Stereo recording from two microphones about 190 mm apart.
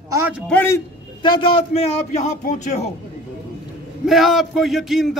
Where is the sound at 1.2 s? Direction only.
25° left (ahead or behind).